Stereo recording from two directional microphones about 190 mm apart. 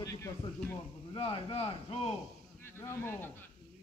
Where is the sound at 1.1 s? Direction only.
30° left (ahead or behind).